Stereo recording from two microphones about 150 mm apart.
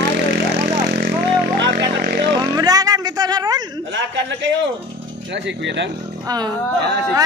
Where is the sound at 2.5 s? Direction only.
25° right (ahead or behind).